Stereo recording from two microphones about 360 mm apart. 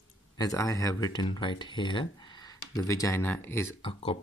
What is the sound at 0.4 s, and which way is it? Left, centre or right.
Speech, centre.